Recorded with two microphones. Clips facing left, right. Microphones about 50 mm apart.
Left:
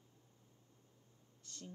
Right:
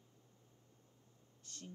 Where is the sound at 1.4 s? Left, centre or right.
Right.